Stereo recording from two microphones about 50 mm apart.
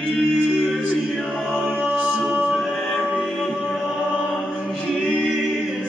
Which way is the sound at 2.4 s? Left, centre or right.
Centre.